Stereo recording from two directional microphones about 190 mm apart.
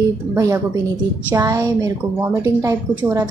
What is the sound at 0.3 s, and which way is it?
A woman's voice, 15° right (ahead or behind).